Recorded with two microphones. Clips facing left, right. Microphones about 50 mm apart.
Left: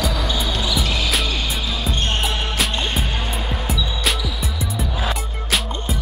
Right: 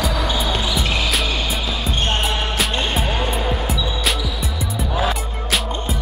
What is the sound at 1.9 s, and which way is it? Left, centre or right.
Basketball bounce, centre.